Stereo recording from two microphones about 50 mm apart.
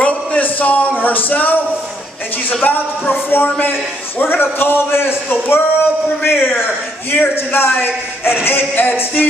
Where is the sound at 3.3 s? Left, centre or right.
Left.